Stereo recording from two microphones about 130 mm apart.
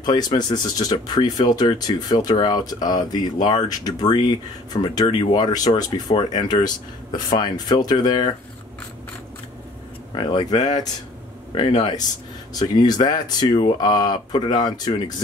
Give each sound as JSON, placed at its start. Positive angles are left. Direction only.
{"t": 0.0, "sound": "speech", "side_deg": 35}
{"t": 10.1, "sound": "speech", "side_deg": 35}
{"t": 12.5, "sound": "speech", "side_deg": 30}